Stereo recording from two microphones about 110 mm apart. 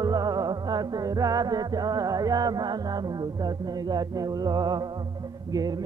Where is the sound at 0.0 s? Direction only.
35° right (ahead or behind).